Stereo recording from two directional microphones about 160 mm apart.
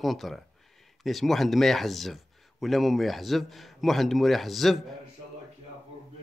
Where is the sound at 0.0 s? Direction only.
Centre (ahead or behind).